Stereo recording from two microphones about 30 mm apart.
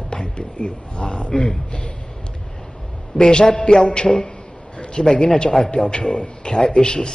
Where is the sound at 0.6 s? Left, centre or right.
Left.